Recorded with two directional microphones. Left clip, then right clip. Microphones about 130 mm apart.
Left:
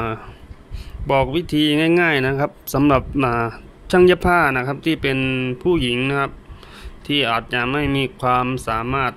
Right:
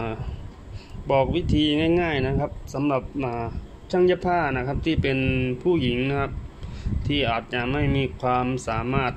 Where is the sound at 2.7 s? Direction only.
40° left (ahead or behind).